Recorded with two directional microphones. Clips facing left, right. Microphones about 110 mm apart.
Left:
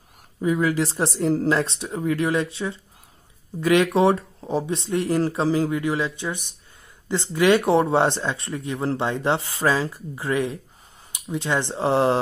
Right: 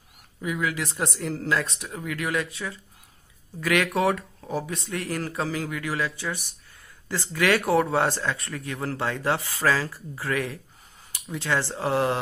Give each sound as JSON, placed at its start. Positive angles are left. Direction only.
{"t": 0.4, "sound": "speech", "side_deg": 35}